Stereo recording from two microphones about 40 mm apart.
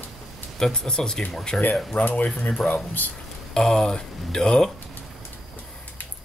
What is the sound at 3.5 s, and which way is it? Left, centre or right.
Speech, centre.